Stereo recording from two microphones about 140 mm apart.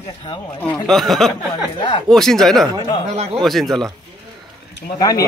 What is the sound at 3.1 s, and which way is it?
Speech, 50° right (ahead or behind).